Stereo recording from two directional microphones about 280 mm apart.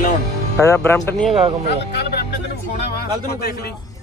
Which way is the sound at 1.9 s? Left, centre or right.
Left.